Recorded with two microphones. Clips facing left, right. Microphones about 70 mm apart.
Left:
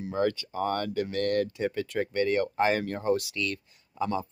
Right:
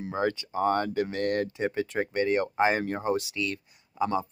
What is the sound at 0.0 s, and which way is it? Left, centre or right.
Speech, right.